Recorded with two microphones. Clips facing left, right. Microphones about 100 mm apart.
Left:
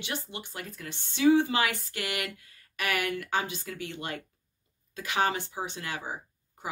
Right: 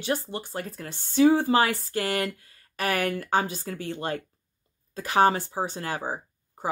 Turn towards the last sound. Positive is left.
turn(degrees=-40)  # may be behind; listen again after turning